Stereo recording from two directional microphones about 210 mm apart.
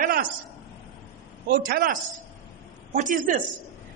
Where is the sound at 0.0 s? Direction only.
40° right (ahead or behind).